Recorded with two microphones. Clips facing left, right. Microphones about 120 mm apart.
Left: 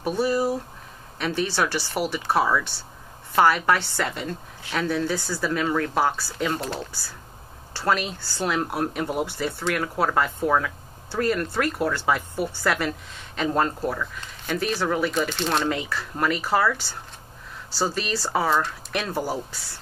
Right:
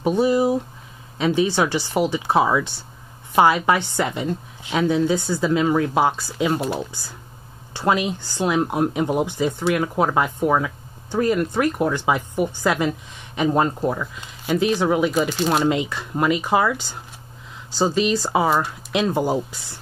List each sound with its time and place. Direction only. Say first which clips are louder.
0.0 s speech: right 5 dB; 20° right (ahead or behind)